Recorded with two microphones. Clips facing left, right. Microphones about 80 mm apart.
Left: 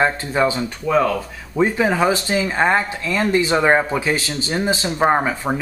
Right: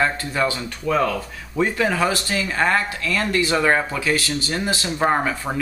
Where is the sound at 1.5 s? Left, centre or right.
Centre.